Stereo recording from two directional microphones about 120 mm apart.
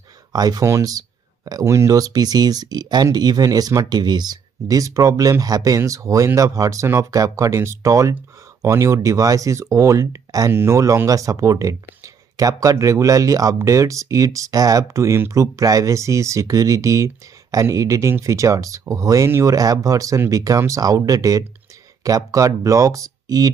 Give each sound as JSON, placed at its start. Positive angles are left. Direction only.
{"t": 0.3, "sound": "speech", "side_deg": -30}